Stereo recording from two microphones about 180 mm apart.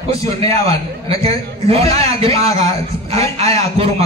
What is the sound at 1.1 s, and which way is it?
A man's voice, 35° right (ahead or behind).